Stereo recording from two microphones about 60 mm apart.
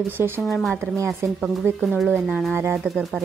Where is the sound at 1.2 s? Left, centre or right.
Right.